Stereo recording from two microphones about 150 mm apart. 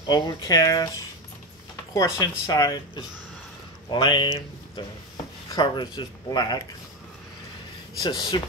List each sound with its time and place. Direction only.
0.0 s speech: 25° left (ahead or behind)
2.0 s speech: 25° left (ahead or behind)
3.9 s speech: 30° left (ahead or behind)
8.0 s speech: 30° left (ahead or behind)